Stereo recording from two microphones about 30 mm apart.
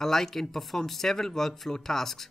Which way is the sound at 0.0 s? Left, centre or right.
Centre.